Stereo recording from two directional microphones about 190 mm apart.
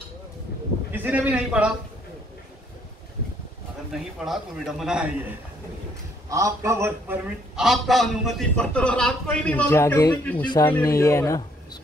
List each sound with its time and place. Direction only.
0.9 s a man's voice: 10° right (ahead or behind)
3.9 s a man's voice: centre (ahead or behind)
6.2 s a man's voice: 15° right (ahead or behind); by 11.8 s 20° left (ahead or behind)